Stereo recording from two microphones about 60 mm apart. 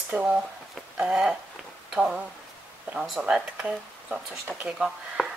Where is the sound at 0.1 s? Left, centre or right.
Right.